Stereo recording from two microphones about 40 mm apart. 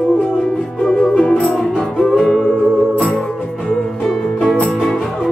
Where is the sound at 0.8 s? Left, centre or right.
Left.